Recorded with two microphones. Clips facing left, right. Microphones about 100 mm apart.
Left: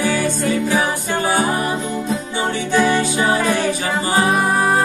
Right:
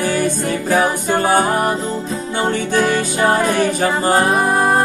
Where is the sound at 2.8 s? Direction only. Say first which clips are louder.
Even; 45° right (ahead or behind).